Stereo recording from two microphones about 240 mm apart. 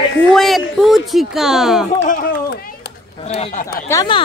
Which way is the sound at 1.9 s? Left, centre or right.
Left.